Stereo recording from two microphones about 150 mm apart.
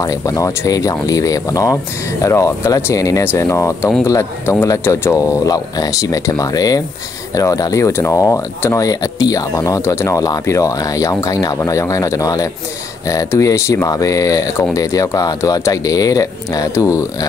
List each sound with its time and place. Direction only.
0.0 s speech: 20° left (ahead or behind)